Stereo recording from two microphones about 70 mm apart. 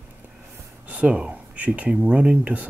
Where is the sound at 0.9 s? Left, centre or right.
Centre.